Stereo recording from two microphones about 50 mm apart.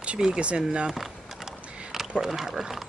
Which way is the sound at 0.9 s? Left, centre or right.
Centre.